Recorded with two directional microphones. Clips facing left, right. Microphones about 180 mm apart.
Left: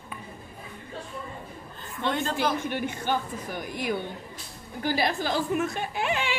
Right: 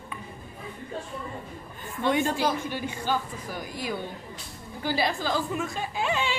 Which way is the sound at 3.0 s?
20° left (ahead or behind).